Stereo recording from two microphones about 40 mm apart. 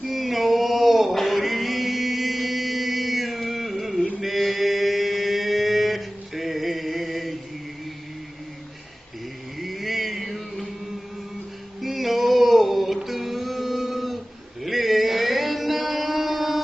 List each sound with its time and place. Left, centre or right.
0.1 s mantra: centre
1.1 s chant: centre
4.2 s mantra: centre
9.6 s music: centre
11.8 s male singing: centre